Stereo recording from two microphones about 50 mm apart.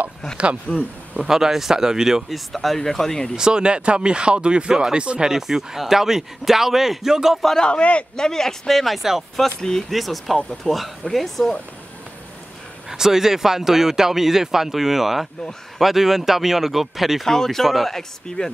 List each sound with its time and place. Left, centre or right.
0.7 s speech: left
1.2 s speech: centre
3.3 s speech: centre
5.3 s speech: centre
7.6 s speech: left
8.2 s speech: centre
9.6 s speech: centre
9.8 s speech: centre
12.9 s speech: centre
17.2 s speech: centre